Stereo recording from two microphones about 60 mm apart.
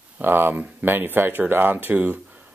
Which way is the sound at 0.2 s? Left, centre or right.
Right.